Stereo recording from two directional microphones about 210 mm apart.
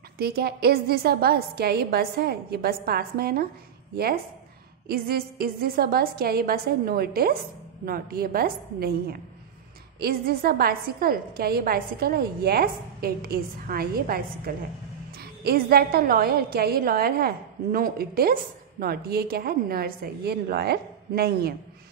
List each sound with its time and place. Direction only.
0.2 s a woman's voice: 50° right (ahead or behind)
9.9 s a woman's voice: 45° right (ahead or behind)